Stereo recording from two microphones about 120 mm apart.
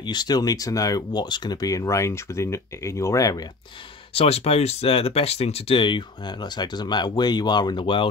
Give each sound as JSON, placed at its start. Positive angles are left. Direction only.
{"t": 0.0, "sound": "speech", "side_deg": 35}
{"t": 4.1, "sound": "speech", "side_deg": 55}